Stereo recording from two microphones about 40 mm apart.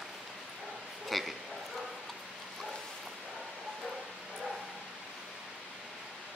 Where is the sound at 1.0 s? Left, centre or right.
Centre.